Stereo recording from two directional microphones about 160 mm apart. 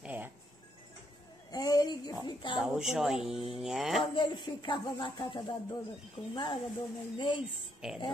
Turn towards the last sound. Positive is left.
turn(degrees=-5)  # may be behind; listen again after turning